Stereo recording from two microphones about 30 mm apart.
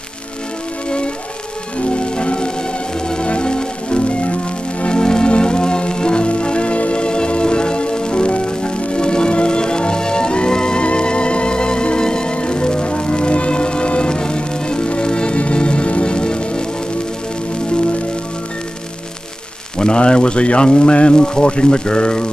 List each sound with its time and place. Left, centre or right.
0.8 s music: left
19.8 s speech: left